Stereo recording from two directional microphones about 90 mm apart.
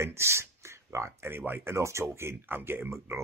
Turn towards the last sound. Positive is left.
turn(degrees=-30)  # may be behind; listen again after turning